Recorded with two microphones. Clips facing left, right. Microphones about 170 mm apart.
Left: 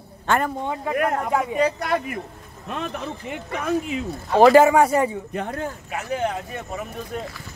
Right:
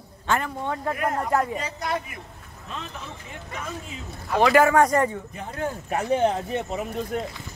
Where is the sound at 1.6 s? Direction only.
60° left (ahead or behind).